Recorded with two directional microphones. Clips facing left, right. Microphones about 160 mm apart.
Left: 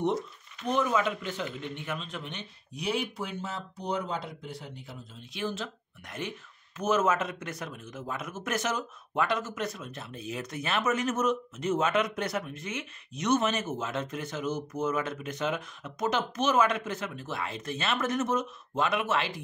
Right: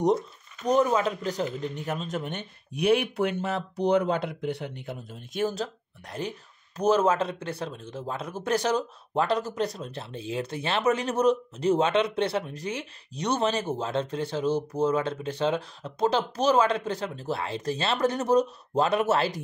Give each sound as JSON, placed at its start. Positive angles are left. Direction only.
{"t": 0.0, "sound": "speech", "side_deg": -40}